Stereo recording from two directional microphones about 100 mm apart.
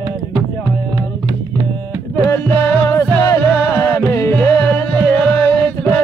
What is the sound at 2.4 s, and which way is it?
Music, 20° left (ahead or behind).